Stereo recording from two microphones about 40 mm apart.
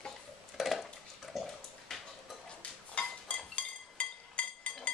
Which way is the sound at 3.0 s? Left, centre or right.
Left.